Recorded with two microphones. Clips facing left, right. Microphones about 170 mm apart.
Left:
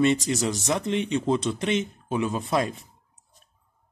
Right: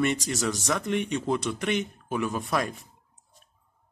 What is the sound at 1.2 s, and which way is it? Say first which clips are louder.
Speech: left 3 dB; 25° left (ahead or behind).